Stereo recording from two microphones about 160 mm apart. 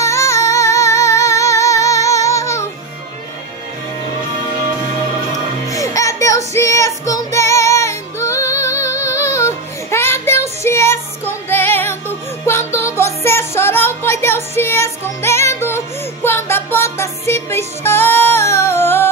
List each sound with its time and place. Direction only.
0.0 s music: 20° left (ahead or behind)
5.7 s music: 20° left (ahead or behind)